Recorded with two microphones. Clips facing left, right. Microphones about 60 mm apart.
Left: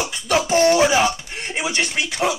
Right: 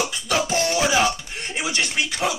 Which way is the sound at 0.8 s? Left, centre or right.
Left.